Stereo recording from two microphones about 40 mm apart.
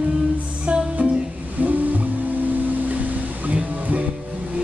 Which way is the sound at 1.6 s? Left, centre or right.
Right.